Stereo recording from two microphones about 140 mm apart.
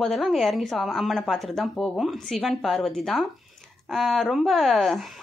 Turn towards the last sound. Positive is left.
turn(degrees=0)  # may be behind; listen again after turning